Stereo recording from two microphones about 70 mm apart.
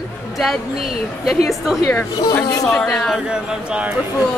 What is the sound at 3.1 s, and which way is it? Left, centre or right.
Speech, centre.